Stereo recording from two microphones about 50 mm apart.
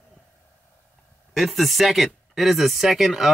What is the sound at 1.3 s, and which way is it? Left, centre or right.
Speech, centre.